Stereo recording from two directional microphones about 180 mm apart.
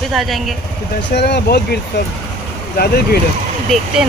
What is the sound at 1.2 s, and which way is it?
Speech, 65° left (ahead or behind).